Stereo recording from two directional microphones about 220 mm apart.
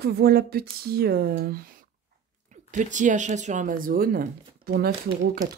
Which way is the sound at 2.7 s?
35° right (ahead or behind).